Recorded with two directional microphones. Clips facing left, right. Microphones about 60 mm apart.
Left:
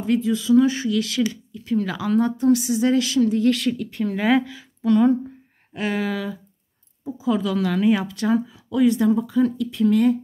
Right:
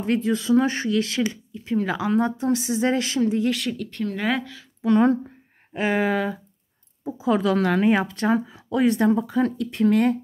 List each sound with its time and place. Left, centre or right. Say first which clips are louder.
0.0 s speech: left 1 dB; right
3.4 s speech: left 5 dB; centre
5.7 s speech: right 2 dB; right
6.0 s speech: right 3 dB; right